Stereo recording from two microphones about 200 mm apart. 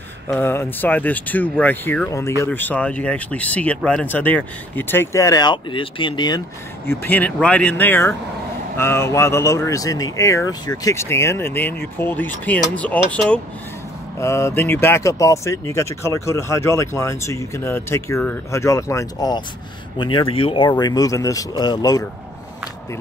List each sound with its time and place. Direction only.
0.3 s speech: 10° left (ahead or behind)
6.9 s speech: 10° left (ahead or behind)